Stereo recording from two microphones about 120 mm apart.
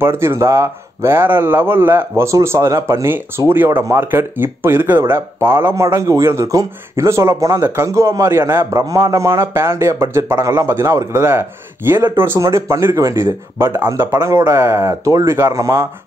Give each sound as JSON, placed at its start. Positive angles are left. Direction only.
{"t": 0.0, "sound": "speech", "side_deg": -20}